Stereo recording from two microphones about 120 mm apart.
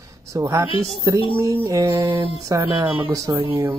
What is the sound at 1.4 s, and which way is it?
Mantra, 25° right (ahead or behind).